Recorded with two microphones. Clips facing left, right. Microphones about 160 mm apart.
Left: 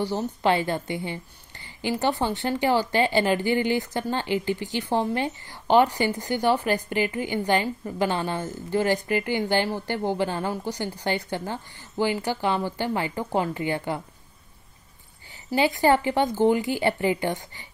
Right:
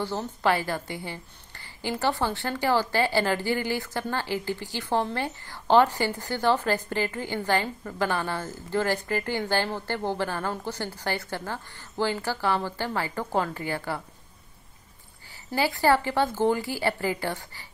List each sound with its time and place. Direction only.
0.0 s a woman's voice: 20° left (ahead or behind)
15.5 s speech: 20° left (ahead or behind)